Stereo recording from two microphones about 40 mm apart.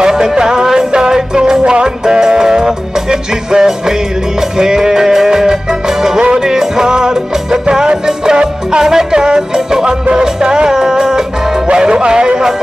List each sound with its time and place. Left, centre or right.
0.0 s music: centre